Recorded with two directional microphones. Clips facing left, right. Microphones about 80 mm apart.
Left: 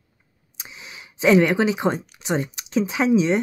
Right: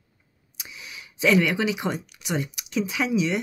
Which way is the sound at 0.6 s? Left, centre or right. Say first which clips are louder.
Left 1 dB; left.